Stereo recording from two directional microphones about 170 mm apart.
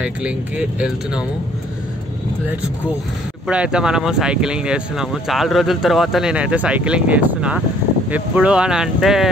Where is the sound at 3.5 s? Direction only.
5° right (ahead or behind).